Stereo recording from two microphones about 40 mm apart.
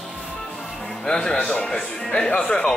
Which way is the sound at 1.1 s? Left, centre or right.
Centre.